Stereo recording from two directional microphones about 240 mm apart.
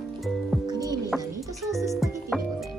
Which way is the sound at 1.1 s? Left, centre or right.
Centre.